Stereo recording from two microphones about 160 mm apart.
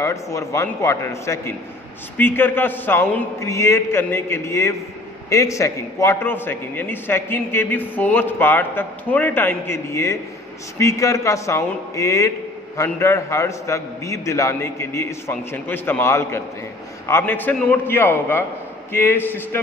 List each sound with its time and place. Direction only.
0.0 s a man's voice: 20° left (ahead or behind)